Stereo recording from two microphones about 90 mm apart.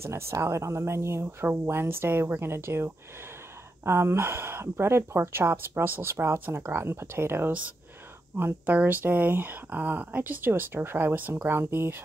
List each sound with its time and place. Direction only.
0.0 s speech: 30° right (ahead or behind)